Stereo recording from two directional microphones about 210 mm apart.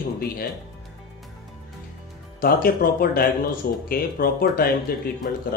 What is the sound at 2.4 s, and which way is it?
Speech, 45° left (ahead or behind).